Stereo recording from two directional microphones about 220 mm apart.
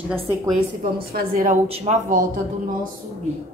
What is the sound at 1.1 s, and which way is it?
A woman's voice, 35° right (ahead or behind).